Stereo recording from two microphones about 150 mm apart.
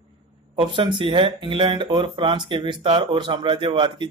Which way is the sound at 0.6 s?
35° right (ahead or behind).